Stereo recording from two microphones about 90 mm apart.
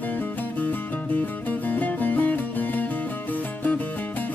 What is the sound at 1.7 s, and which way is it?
Music, 20° left (ahead or behind).